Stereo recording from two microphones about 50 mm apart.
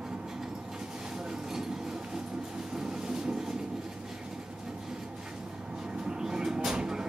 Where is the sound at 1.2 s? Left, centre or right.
Centre.